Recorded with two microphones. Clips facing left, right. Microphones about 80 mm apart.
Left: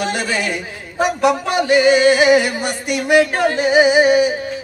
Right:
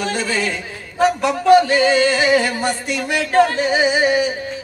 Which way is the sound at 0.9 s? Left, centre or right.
Centre.